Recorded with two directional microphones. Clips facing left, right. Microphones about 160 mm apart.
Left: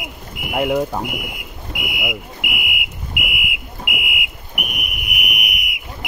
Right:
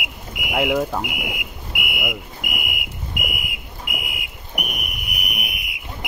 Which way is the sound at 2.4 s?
40° right (ahead or behind).